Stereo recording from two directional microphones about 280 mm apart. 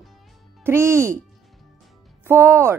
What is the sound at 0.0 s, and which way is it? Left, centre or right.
Music, centre.